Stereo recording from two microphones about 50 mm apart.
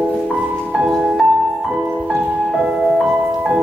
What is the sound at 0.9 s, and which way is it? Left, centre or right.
Music, centre.